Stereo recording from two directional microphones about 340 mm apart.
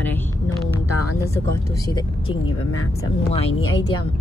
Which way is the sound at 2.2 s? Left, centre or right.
Left.